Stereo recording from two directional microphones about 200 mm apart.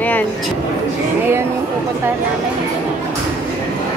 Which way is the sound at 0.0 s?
10° left (ahead or behind).